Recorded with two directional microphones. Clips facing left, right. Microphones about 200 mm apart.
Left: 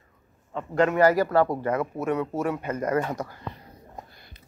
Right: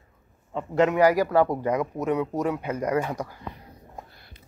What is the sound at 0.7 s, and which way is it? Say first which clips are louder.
Speech: even; 15° right (ahead or behind).